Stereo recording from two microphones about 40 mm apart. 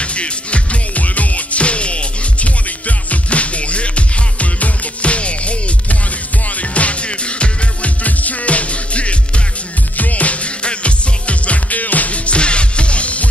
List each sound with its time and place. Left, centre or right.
0.0 s music: left